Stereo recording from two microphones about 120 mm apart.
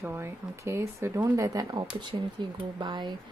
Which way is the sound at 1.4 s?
30° right (ahead or behind).